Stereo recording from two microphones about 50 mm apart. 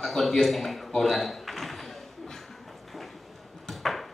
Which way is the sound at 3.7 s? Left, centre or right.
Centre.